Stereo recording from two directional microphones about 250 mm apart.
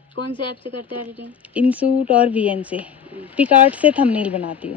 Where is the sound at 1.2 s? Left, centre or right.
Centre.